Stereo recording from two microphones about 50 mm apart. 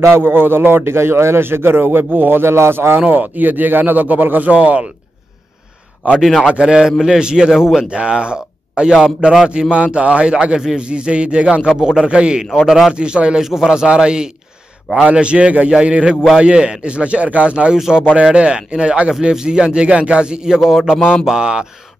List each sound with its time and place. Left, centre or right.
0.0 s a man's voice: right
3.1 s speech: right
6.1 s a man's voice: centre; by 12.4 s right
12.6 s a man's voice: centre
12.9 s speech: centre
17.7 s speech: centre
18.1 s speech: centre